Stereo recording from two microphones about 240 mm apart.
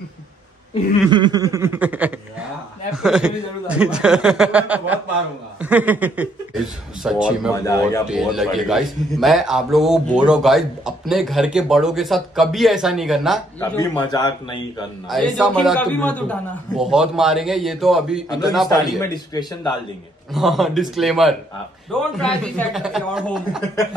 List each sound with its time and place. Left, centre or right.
1.1 s a sound: centre
3.0 s a man's voice: centre
7.5 s a man's voice: centre
8.1 s a man's voice: centre
13.6 s a man's voice: centre
15.0 s a man's voice: centre
18.7 s a man's voice: centre
20.3 s a man's voice: centre